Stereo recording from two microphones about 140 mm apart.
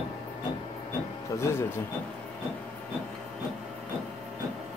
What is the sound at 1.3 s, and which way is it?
Vehicle, 20° left (ahead or behind).